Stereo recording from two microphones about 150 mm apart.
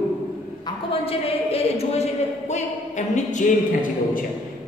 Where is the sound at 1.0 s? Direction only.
40° left (ahead or behind).